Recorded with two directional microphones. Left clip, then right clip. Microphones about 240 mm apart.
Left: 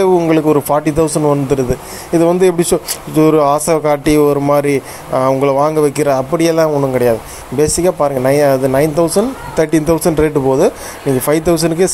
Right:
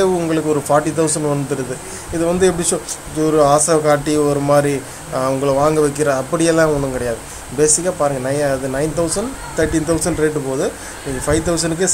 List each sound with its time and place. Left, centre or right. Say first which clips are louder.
0.0 s speech: left 6 dB; centre